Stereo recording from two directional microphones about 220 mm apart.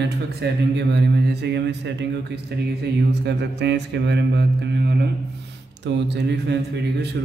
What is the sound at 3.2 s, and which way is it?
Mantra, 50° right (ahead or behind).